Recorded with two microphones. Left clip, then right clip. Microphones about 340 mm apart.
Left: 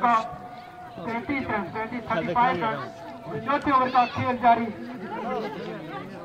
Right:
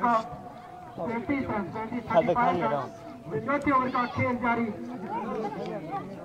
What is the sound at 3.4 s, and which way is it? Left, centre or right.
Speech, centre.